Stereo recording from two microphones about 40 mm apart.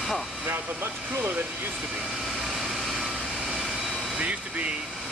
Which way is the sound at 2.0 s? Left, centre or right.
Centre.